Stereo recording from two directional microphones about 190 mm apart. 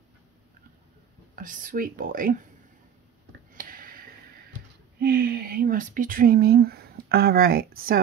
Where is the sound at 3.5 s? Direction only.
45° right (ahead or behind).